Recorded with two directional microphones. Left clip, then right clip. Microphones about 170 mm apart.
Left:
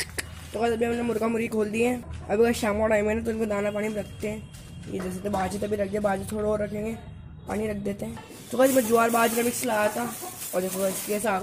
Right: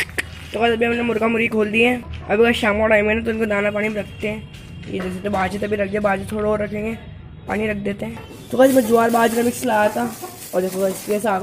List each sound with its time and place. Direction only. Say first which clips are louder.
0.0 s speech: right 10 dB; centre (ahead or behind)